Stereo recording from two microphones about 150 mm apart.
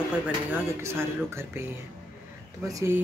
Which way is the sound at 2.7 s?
20° right (ahead or behind).